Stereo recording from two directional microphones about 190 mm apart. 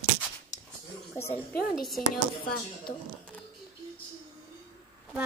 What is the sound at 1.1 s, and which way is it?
Speech, 15° left (ahead or behind).